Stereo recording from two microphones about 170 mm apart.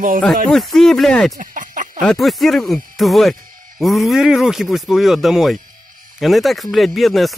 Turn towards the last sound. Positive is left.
turn(degrees=0)  # may be behind; listen again after turning